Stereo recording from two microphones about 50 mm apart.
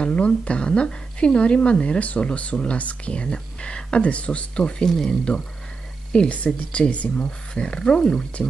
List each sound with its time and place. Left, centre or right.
0.0 s a woman's voice: centre
4.8 s speech: centre
6.1 s a woman's voice: left
7.2 s speech: centre